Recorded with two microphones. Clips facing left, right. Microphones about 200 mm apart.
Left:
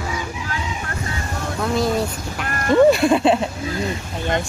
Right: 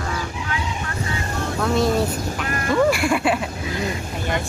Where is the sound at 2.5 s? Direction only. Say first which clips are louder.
Left 5 dB; 45° left (ahead or behind).